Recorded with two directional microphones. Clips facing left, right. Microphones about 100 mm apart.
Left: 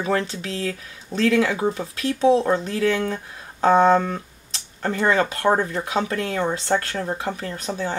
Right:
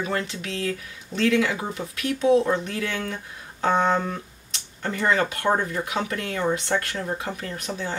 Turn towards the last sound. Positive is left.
turn(degrees=35)  # may be behind; listen again after turning